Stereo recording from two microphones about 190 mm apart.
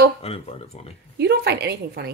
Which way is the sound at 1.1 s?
60° right (ahead or behind).